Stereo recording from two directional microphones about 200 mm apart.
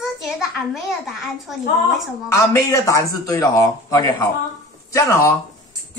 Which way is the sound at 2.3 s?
15° left (ahead or behind).